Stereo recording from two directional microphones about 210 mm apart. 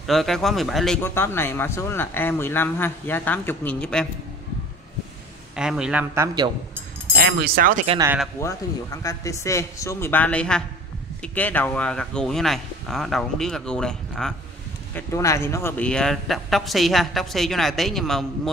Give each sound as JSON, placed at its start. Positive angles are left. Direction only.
{"t": 0.0, "sound": "a man's voice", "side_deg": 0}
{"t": 1.0, "sound": "speech", "side_deg": 10}
{"t": 5.6, "sound": "a man's voice", "side_deg": -5}
{"t": 7.3, "sound": "speech", "side_deg": -45}
{"t": 8.4, "sound": "a man's voice", "side_deg": 15}
{"t": 15.0, "sound": "a man's voice", "side_deg": 15}